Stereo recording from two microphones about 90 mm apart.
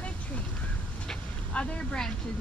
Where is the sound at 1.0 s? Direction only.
10° left (ahead or behind).